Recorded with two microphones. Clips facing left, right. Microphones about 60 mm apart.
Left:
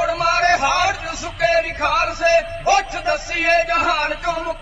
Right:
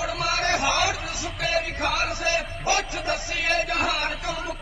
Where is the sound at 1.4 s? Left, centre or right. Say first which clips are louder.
Left 9 dB; left.